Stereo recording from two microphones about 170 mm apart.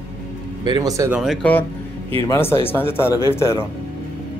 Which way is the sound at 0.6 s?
25° right (ahead or behind).